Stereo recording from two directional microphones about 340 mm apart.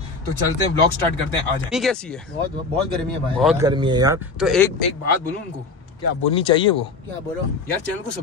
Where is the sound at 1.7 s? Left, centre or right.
Centre.